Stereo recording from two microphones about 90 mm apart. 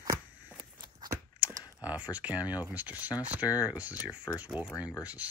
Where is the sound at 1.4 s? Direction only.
15° right (ahead or behind).